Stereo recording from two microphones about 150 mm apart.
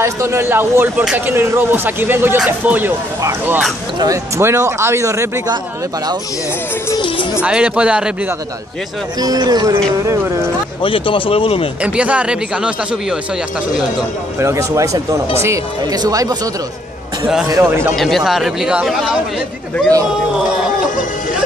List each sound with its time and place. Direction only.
0.0 s a man's voice: 20° right (ahead or behind)
6.9 s speech: 30° left (ahead or behind)
7.4 s speech: 10° right (ahead or behind)
9.2 s a man's voice: 25° right (ahead or behind)
10.8 s speech: 35° left (ahead or behind)
11.8 s speech: 10° right (ahead or behind)
14.4 s a man's voice: 20° right (ahead or behind)
17.5 s a man's voice: 20° right (ahead or behind)
17.9 s speech: centre (ahead or behind)